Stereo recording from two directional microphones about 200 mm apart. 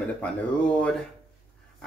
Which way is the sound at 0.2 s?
5° left (ahead or behind).